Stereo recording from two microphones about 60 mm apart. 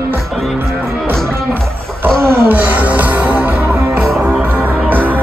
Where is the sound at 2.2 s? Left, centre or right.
Right.